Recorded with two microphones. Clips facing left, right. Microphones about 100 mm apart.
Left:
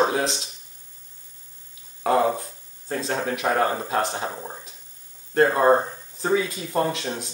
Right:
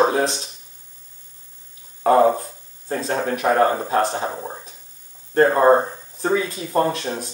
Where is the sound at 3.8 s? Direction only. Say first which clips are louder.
Right 4 dB; 10° right (ahead or behind).